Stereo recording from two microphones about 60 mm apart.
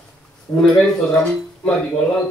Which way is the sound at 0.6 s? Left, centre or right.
Centre.